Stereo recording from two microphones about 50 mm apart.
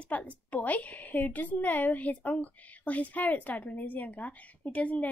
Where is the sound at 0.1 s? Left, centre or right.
Left.